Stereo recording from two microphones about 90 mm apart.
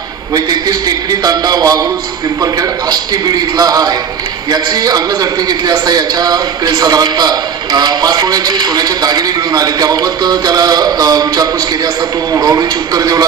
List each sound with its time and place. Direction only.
0.3 s a man's voice: 45° right (ahead or behind)